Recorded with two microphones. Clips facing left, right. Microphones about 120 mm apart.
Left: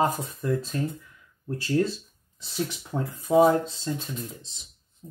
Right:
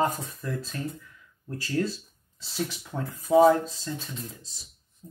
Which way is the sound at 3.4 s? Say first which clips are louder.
Right 1 dB; 25° left (ahead or behind).